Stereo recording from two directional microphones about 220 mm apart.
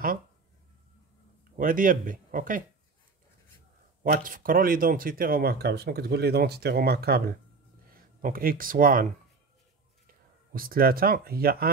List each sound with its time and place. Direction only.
1.6 s speech: 40° right (ahead or behind)
4.0 s speech: 40° right (ahead or behind)
10.5 s speech: 40° right (ahead or behind)